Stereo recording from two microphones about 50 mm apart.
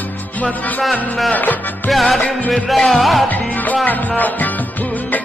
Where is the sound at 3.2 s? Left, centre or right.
Left.